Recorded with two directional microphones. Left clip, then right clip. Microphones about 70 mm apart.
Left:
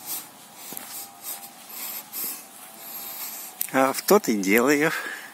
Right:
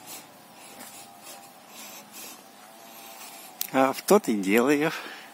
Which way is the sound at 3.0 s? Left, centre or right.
Centre.